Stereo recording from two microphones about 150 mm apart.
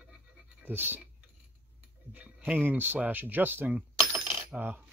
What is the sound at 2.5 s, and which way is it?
Speech, 15° right (ahead or behind).